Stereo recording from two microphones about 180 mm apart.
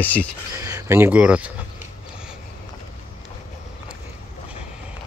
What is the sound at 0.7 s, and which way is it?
Speech, 15° right (ahead or behind).